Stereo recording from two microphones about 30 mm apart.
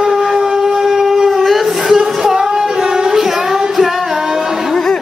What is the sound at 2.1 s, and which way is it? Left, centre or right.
Singing, centre.